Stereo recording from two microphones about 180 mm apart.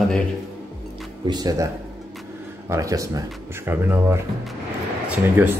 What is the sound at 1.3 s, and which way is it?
Speech, 20° right (ahead or behind).